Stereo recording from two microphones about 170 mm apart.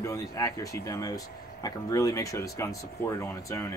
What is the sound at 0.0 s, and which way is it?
Speech, 20° left (ahead or behind).